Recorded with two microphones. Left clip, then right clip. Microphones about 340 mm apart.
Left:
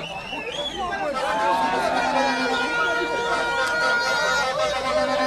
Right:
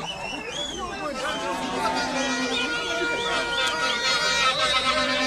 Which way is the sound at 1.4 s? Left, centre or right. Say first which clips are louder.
Left 7 dB; left.